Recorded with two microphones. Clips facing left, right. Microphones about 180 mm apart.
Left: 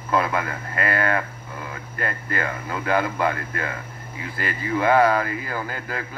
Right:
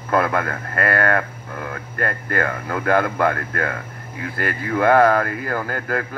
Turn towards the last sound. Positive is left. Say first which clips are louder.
# right 6 dB
turn(degrees=-50)  # may be behind; listen again after turning